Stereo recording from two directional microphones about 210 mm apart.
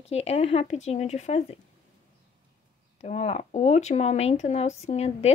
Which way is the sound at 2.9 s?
30° left (ahead or behind).